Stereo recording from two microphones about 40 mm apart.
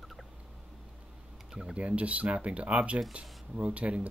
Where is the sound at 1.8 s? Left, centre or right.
Right.